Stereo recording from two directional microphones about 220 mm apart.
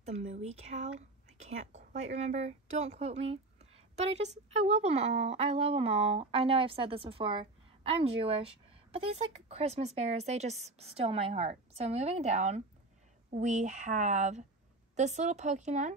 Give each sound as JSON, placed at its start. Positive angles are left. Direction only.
{"t": 0.0, "sound": "speech", "side_deg": -30}